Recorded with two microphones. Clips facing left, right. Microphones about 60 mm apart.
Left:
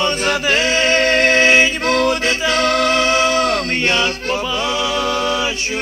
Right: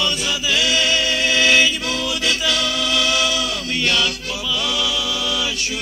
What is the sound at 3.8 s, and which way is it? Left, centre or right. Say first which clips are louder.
Male singing: even; left.